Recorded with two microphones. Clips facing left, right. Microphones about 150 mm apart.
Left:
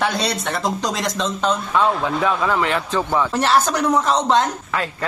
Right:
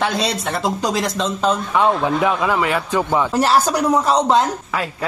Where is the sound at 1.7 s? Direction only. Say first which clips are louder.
Right 2 dB; 20° right (ahead or behind).